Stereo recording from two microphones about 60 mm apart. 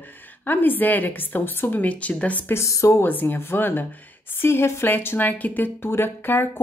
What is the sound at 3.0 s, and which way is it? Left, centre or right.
Speech, left.